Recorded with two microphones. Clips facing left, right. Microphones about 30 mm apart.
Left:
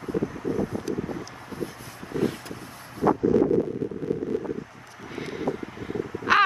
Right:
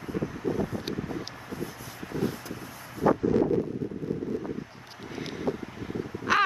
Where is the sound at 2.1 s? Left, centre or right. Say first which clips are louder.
Left 4 dB; left.